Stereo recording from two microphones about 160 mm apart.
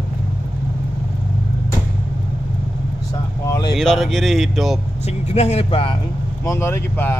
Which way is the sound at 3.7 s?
Centre (ahead or behind).